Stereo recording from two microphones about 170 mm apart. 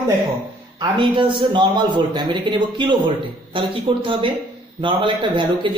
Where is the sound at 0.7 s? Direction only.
30° right (ahead or behind).